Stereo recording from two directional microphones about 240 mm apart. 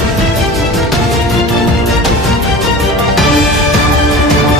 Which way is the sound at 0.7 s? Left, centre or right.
Centre.